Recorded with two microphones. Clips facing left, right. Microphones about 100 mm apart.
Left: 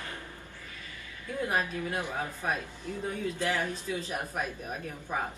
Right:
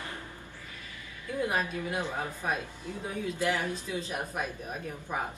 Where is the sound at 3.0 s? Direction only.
10° right (ahead or behind).